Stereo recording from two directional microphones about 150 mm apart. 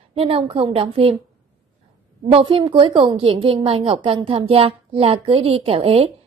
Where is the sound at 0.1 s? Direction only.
40° right (ahead or behind).